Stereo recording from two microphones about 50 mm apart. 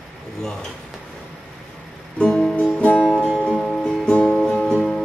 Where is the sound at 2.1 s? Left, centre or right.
Centre.